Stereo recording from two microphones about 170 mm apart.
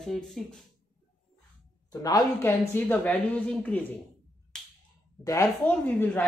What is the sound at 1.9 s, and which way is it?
Speech, 20° left (ahead or behind).